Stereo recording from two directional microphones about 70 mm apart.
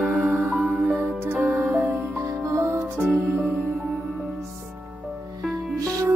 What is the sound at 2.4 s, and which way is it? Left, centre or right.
Music, right.